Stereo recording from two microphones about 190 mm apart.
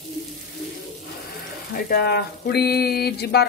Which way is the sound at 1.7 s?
55° left (ahead or behind).